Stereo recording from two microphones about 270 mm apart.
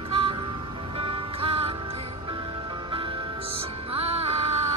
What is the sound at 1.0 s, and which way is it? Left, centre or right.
Music, right.